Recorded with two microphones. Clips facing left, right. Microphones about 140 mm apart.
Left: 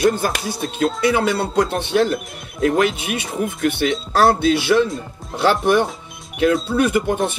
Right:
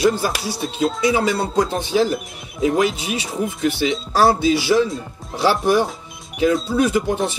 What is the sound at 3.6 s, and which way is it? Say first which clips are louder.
Speech: left 1 dB; 55° left (ahead or behind).